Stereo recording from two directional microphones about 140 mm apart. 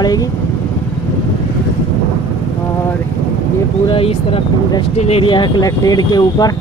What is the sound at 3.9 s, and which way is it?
Speech, 40° left (ahead or behind).